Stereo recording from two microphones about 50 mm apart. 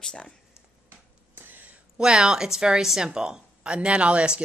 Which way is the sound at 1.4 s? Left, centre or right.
Right.